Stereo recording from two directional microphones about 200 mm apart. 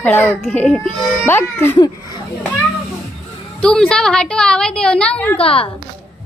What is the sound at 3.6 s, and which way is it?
A woman's voice, 5° left (ahead or behind).